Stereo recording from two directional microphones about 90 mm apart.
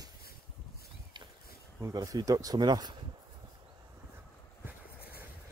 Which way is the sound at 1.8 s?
40° right (ahead or behind).